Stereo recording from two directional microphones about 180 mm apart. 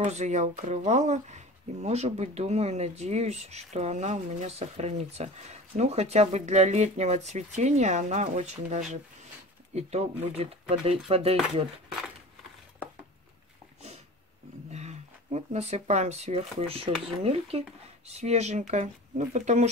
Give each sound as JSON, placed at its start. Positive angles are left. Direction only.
{"t": 0.0, "sound": "speech", "side_deg": -40}
{"t": 14.7, "sound": "speech", "side_deg": -40}